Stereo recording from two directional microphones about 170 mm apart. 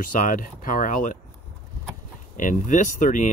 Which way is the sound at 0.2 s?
50° left (ahead or behind).